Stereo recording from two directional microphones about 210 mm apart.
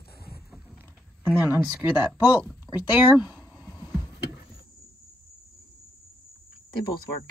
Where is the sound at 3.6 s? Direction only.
20° left (ahead or behind).